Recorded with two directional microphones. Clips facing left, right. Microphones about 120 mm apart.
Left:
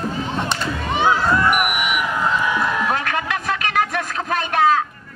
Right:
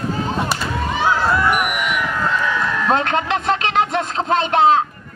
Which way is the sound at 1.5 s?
10° left (ahead or behind).